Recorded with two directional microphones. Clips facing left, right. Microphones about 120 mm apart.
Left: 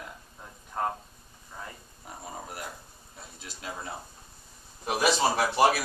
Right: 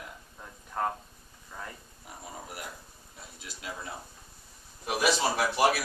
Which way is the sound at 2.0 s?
35° left (ahead or behind).